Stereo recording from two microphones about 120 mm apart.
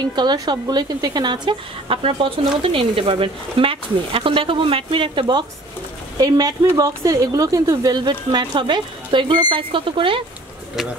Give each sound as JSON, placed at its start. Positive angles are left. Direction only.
{"t": 0.0, "sound": "speech", "side_deg": -35}
{"t": 6.1, "sound": "speech", "side_deg": -30}